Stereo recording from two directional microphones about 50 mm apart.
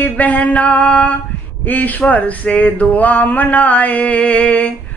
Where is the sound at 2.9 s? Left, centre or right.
Left.